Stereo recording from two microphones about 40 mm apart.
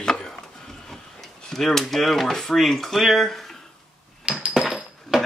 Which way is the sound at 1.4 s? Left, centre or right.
Centre.